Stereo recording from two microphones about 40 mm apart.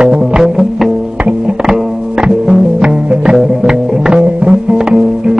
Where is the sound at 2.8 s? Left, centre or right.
Right.